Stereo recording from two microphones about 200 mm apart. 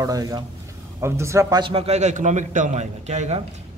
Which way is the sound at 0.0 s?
15° right (ahead or behind).